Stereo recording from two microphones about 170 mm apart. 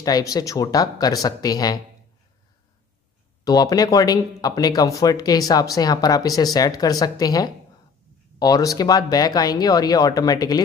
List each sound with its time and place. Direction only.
0.0 s speech: 20° left (ahead or behind)
3.4 s speech: 20° left (ahead or behind)